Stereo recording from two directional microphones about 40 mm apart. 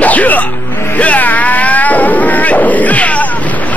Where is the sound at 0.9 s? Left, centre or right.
Left.